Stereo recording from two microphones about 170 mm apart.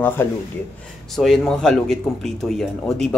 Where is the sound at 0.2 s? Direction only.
15° left (ahead or behind).